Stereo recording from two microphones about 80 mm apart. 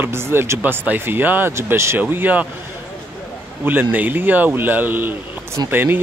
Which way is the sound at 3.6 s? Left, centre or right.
Right.